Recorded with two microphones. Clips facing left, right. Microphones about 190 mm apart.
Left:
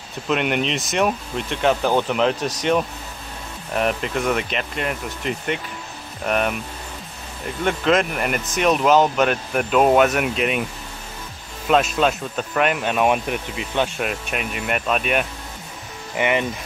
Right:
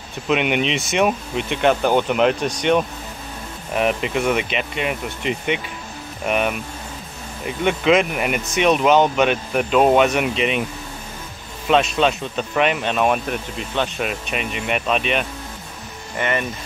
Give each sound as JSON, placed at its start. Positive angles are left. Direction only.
{"t": 0.3, "sound": "speech", "side_deg": -5}
{"t": 11.7, "sound": "speech", "side_deg": 5}
{"t": 16.2, "sound": "speech", "side_deg": 15}